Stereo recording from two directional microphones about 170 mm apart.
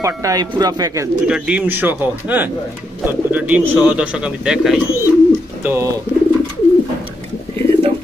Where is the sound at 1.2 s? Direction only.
5° right (ahead or behind).